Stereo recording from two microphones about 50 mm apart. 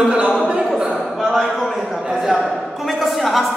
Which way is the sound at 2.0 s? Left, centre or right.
Centre.